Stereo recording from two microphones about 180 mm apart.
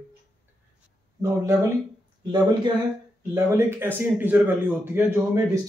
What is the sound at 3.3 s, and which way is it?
Speech, 15° right (ahead or behind).